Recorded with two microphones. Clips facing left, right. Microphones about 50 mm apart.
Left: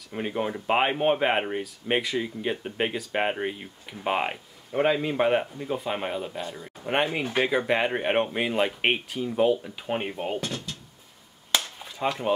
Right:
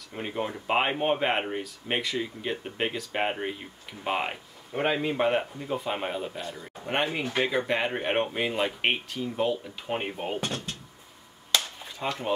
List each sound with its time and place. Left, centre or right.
0.1 s speech: centre
9.9 s speech: centre
10.4 s drawer open or close: right
12.0 s speech: centre